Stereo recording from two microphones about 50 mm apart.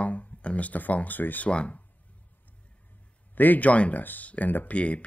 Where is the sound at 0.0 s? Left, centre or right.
Left.